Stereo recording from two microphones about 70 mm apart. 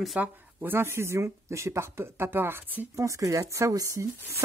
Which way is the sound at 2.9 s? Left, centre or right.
Right.